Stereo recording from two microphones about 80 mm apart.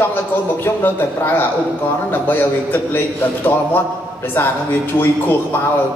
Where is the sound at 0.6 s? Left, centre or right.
Left.